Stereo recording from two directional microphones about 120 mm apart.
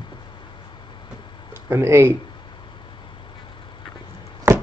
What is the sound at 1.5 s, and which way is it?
Speech, 20° right (ahead or behind).